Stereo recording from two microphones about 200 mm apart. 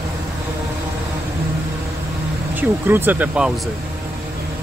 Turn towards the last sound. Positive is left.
turn(degrees=-5)  # may be behind; listen again after turning